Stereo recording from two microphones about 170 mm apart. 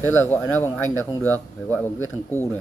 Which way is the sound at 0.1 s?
15° left (ahead or behind).